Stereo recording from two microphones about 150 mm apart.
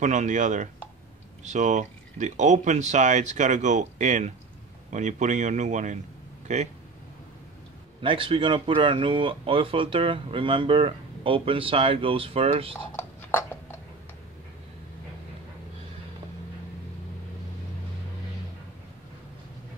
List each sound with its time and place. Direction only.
0.0 s speech: 55° right (ahead or behind)
8.0 s speech: 35° right (ahead or behind)
12.9 s a sound: 15° left (ahead or behind)